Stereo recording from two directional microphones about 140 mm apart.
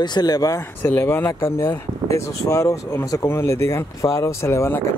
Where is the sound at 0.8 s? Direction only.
15° left (ahead or behind).